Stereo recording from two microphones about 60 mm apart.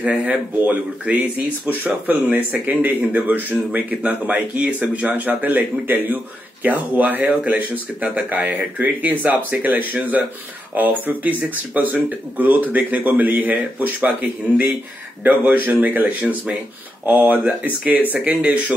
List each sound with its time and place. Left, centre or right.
0.0 s speech: right